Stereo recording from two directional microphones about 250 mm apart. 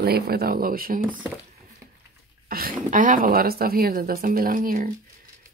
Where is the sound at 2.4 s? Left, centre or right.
Right.